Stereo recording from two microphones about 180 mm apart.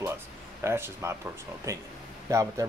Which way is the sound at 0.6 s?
15° right (ahead or behind).